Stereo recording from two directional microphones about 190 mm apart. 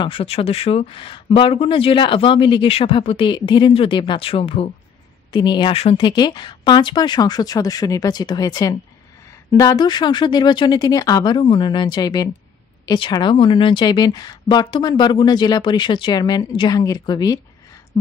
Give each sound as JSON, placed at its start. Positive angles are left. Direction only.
{"t": 0.0, "sound": "speech", "side_deg": 30}